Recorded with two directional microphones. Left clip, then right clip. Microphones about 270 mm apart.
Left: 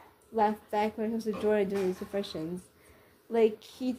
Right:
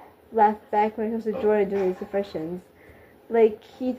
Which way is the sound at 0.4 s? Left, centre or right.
Centre.